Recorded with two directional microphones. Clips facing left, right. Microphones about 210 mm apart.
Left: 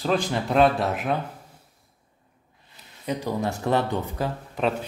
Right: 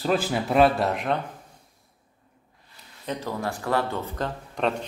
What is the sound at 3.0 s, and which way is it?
Speech, 15° left (ahead or behind).